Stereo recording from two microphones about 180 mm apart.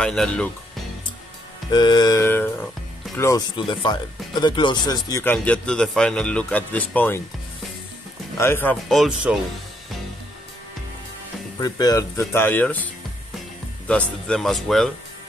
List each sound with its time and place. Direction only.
0.0 s speech: 5° left (ahead or behind)
1.7 s a sound: 25° left (ahead or behind)
3.2 s speech: 20° left (ahead or behind)
8.4 s speech: 10° left (ahead or behind)
11.5 s speech: 20° left (ahead or behind); by 14.9 s centre (ahead or behind)